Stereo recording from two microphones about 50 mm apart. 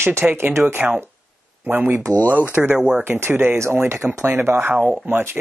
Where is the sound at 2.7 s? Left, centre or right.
Centre.